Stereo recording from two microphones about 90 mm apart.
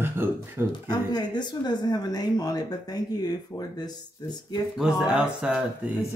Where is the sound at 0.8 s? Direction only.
50° left (ahead or behind).